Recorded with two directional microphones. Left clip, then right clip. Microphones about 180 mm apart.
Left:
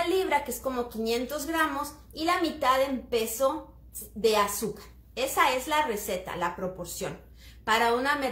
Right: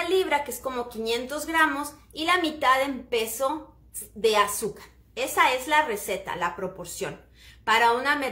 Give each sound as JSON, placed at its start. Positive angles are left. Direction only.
{"t": 0.1, "sound": "a woman's voice", "side_deg": -20}